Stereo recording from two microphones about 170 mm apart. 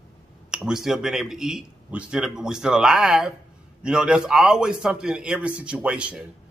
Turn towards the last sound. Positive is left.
turn(degrees=-5)  # may be behind; listen again after turning